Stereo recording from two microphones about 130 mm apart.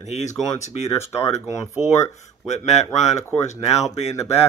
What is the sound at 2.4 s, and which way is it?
Speech, 60° left (ahead or behind).